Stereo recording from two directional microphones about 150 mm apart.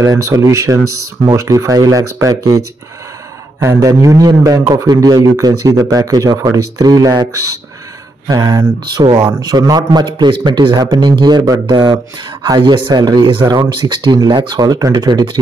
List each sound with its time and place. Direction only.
0.0 s a man's voice: 20° right (ahead or behind)